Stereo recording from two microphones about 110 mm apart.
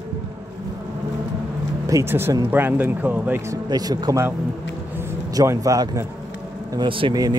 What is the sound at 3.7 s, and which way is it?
Speech, 35° right (ahead or behind).